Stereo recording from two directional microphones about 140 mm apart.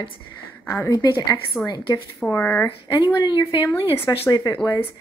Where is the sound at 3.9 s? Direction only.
15° left (ahead or behind).